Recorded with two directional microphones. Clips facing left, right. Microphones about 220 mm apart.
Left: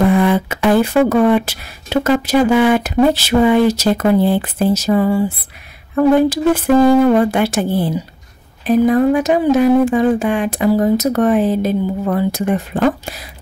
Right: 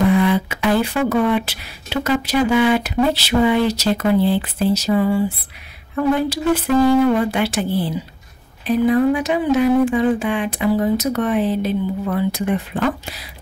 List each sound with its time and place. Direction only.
0.1 s speech: 50° left (ahead or behind)